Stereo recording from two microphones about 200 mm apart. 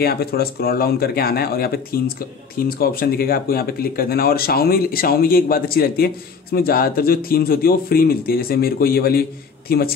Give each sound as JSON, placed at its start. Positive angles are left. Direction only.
{"t": 0.0, "sound": "speech", "side_deg": 50}